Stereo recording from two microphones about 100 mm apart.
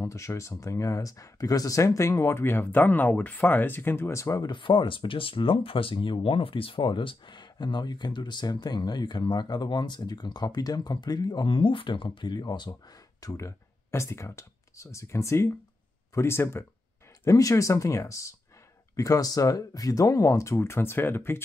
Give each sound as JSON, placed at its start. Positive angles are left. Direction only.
{"t": 0.0, "sound": "speech", "side_deg": 30}
{"t": 4.5, "sound": "speech", "side_deg": 50}
{"t": 13.2, "sound": "speech", "side_deg": 30}